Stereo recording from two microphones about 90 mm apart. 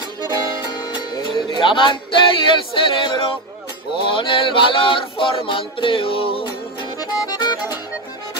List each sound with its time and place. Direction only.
0.2 s music: 50° left (ahead or behind); by 3.3 s 70° left (ahead or behind)
3.9 s male singing: 70° left (ahead or behind); by 6.5 s 90° left
7.0 s music: 50° left (ahead or behind)